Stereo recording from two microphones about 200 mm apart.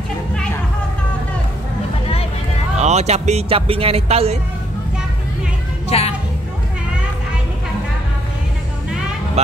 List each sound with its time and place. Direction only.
2.8 s speech: 35° right (ahead or behind)
5.9 s music: 30° left (ahead or behind)